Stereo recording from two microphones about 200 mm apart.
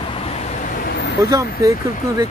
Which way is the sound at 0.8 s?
55° left (ahead or behind).